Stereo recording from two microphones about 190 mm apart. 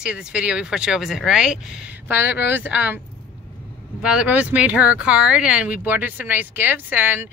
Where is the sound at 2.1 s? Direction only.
60° left (ahead or behind).